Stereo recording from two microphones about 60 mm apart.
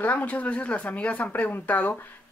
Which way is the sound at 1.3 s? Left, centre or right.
Left.